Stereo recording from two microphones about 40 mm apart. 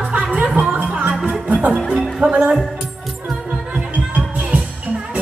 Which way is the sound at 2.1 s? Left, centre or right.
Right.